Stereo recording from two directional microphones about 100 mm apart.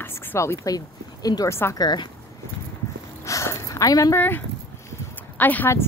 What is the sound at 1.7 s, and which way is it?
Speech, 45° left (ahead or behind).